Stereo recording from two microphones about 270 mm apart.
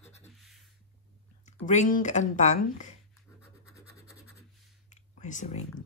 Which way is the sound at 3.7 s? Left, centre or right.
Centre.